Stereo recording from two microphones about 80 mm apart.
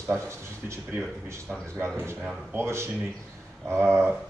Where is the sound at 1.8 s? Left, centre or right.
Right.